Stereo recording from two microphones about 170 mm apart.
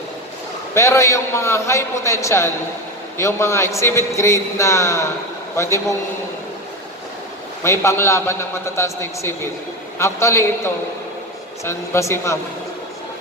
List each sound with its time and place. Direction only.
0.7 s a man's voice: 15° left (ahead or behind)
7.6 s a man's voice: 15° left (ahead or behind)